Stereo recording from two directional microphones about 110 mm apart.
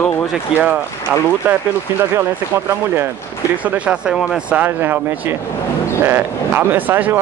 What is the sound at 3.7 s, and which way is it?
Speech, 10° right (ahead or behind).